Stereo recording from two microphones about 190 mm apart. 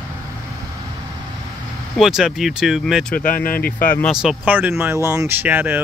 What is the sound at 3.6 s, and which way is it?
Speech, 45° left (ahead or behind).